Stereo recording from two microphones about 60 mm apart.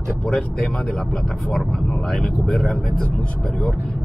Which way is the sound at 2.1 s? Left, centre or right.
Centre.